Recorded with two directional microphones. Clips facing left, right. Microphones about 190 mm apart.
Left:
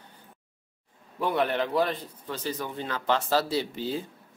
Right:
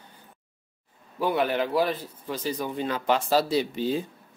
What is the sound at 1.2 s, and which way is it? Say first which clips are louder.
A man's voice: right 2 dB; 5° right (ahead or behind).